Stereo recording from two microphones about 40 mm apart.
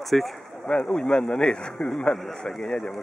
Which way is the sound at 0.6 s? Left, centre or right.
Centre.